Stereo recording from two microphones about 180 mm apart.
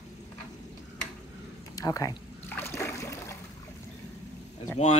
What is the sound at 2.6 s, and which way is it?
Splash, 15° left (ahead or behind).